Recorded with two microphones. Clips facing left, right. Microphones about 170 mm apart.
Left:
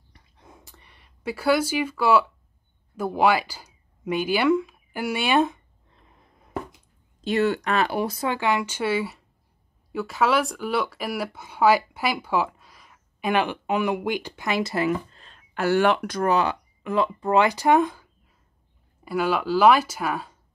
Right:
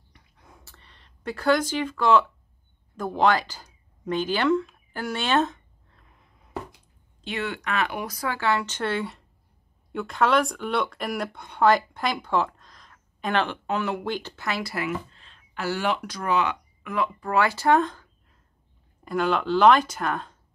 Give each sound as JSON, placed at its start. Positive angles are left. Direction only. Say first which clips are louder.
{"t": 0.7, "sound": "speech", "louder": "left 1 dB", "side_deg": 15}
{"t": 7.2, "sound": "speech", "louder": "left 9 dB", "side_deg": 40}
{"t": 14.9, "sound": "speech", "louder": "left 5 dB", "side_deg": 45}